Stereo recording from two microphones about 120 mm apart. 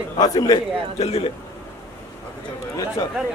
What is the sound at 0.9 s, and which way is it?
Speech, 60° left (ahead or behind).